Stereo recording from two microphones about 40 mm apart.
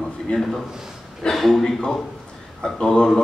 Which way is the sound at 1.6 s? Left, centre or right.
Centre.